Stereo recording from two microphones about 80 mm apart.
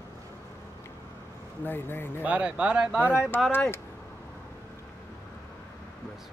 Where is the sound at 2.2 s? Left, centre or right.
Centre.